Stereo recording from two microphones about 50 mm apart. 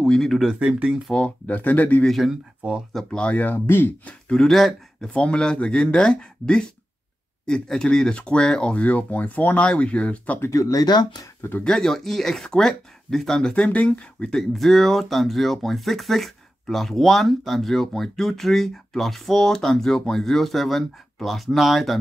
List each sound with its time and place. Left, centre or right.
0.0 s speech: centre
0.6 s speech: right
1.5 s speech: left
2.9 s speech: centre
3.3 s speech: left
3.5 s speech: left
4.4 s speech: centre
5.1 s speech: centre
11.6 s speech: centre
13.5 s speech: left
14.3 s speech: centre